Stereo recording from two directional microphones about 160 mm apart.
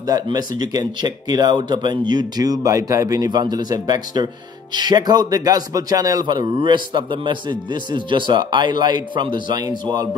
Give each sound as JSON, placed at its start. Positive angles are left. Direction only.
{"t": 0.0, "sound": "speech", "side_deg": -25}